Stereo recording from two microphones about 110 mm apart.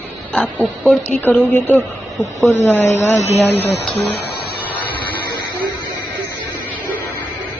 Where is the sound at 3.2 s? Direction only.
70° left (ahead or behind).